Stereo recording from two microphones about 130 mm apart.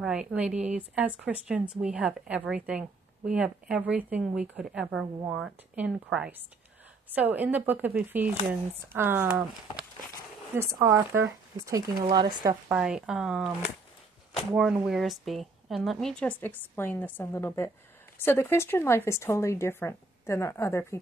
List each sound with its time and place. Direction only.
0.0 s speech: 10° right (ahead or behind)
10.5 s speech: 20° right (ahead or behind)
14.5 s a woman's voice: 5° right (ahead or behind); by 21.0 s 20° left (ahead or behind)